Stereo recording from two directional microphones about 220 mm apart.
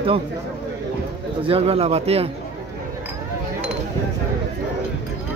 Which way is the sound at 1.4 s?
25° right (ahead or behind).